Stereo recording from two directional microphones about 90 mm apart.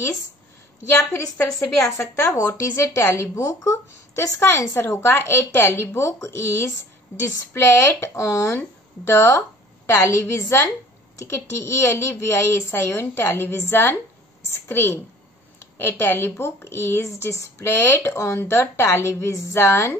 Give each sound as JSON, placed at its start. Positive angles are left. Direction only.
{"t": 0.9, "sound": "a woman's voice", "side_deg": 30}